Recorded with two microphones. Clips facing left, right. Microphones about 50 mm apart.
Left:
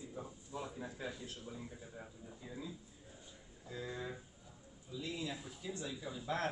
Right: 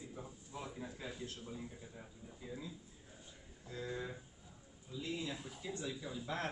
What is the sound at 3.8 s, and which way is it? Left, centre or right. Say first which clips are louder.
Speech: right 1 dB; centre.